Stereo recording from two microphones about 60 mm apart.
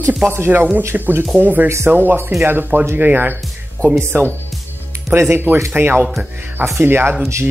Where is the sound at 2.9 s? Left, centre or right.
Right.